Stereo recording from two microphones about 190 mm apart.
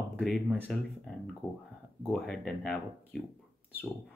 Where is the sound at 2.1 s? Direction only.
5° left (ahead or behind).